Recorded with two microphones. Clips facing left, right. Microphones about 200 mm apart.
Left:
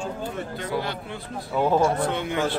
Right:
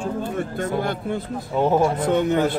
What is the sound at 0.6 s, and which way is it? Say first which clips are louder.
Speech: right 4 dB; 50° right (ahead or behind).